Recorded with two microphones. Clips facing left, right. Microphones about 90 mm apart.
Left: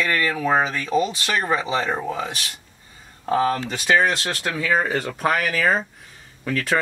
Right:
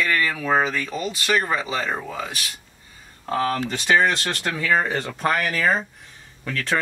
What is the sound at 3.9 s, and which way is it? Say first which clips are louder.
Speech: right 1 dB; 5° left (ahead or behind).